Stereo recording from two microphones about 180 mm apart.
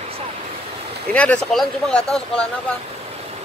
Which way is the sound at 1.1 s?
5° left (ahead or behind).